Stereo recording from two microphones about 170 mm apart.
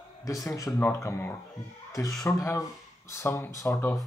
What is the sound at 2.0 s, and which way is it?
Speech, centre (ahead or behind).